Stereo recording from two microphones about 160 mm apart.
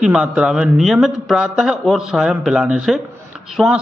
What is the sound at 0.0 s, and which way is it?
A man's voice, 5° right (ahead or behind).